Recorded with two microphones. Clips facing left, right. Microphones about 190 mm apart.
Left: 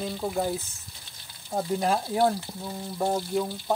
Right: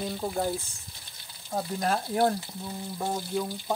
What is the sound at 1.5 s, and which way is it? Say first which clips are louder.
Speech: left 3 dB; 10° left (ahead or behind).